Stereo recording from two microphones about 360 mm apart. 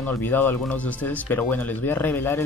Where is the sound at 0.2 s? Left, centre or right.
Centre.